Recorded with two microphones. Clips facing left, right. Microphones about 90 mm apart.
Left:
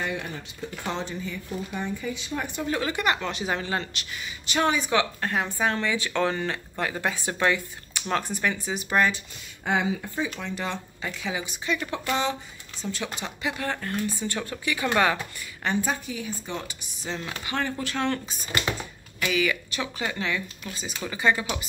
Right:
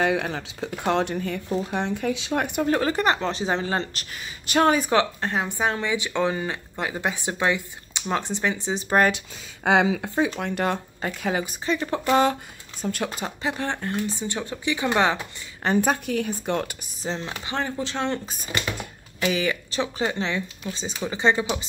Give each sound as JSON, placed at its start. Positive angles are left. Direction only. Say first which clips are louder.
{"t": 0.0, "sound": "speech", "louder": "right 8 dB", "side_deg": -90}
{"t": 2.6, "sound": "speech", "louder": "right 4 dB", "side_deg": -40}
{"t": 5.2, "sound": "speech", "louder": "right 1 dB", "side_deg": -20}
{"t": 9.7, "sound": "speech", "louder": "right 6 dB", "side_deg": -90}
{"t": 10.4, "sound": "speech", "louder": "right 6 dB", "side_deg": -55}
{"t": 11.6, "sound": "speech", "louder": "right 3 dB", "side_deg": -35}
{"t": 12.8, "sound": "speech", "louder": "right 5 dB", "side_deg": -45}
{"t": 15.8, "sound": "speech", "louder": "right 6 dB", "side_deg": -60}
{"t": 17.0, "sound": "speech", "louder": "right 3 dB", "side_deg": -30}